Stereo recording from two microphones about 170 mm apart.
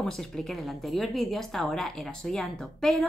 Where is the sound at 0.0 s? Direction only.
Centre (ahead or behind).